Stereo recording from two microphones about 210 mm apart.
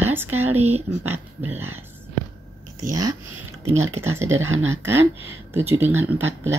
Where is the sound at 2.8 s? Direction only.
15° right (ahead or behind).